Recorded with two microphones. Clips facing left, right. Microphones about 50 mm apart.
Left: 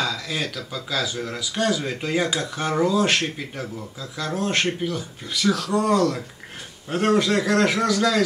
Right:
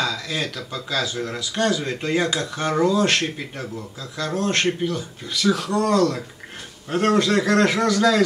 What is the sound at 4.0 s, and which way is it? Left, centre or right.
A man's voice, centre.